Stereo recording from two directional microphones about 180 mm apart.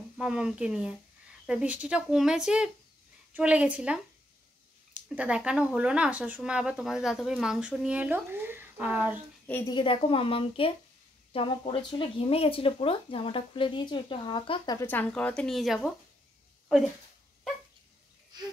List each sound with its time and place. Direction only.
0.2 s speech: 5° right (ahead or behind)
9.7 s speech: 25° left (ahead or behind)
14.8 s speech: 10° left (ahead or behind)